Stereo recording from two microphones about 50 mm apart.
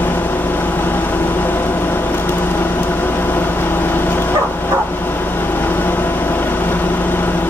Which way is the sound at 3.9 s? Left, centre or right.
Left.